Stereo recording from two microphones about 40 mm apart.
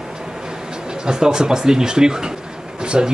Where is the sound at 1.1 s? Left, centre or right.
Centre.